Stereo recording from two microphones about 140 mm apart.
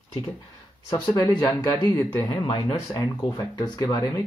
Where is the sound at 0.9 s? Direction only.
30° left (ahead or behind).